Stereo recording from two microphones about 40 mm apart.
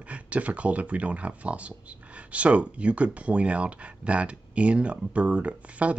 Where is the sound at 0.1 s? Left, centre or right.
Right.